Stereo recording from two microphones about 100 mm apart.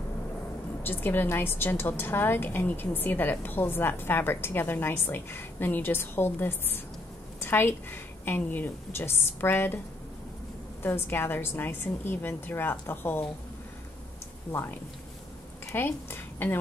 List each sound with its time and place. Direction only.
0.8 s a woman's voice: 20° left (ahead or behind)
10.8 s a woman's voice: 20° left (ahead or behind)
14.5 s a woman's voice: 25° left (ahead or behind)